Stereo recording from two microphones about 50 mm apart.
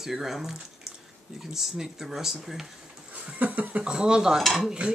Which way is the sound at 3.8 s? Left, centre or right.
Centre.